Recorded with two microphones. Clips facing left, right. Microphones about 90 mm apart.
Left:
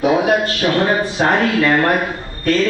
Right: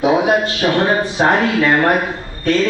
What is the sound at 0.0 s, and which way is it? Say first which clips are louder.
A man's voice: right 1 dB; 15° right (ahead or behind).